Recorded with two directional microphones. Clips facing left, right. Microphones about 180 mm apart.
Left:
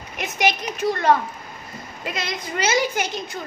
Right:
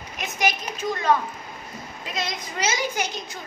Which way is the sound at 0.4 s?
70° left (ahead or behind).